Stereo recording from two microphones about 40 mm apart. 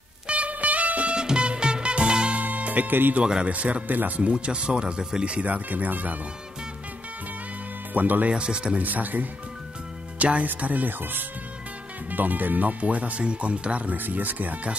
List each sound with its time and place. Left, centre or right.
0.3 s music: right
1.1 s music: right
2.3 s music: right
2.9 s speech: right
3.4 s speech: right
3.8 s speech: right
4.2 s speech: right
7.9 s speech: right
8.3 s speech: right
8.7 s speech: right
10.1 s speech: right
10.4 s speech: right
13.9 s speech: right